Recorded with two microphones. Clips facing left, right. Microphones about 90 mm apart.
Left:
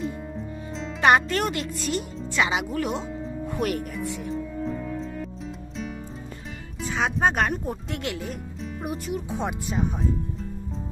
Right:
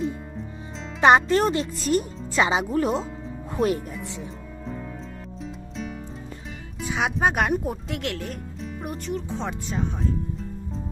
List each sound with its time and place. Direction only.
1.0 s speech: 25° right (ahead or behind)
6.8 s speech: 5° right (ahead or behind)